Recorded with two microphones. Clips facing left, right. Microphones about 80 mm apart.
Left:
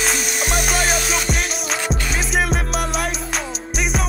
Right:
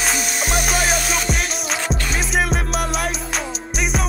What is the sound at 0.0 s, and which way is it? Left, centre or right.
Music, centre.